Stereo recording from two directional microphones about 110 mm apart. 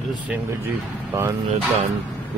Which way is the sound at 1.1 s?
20° right (ahead or behind).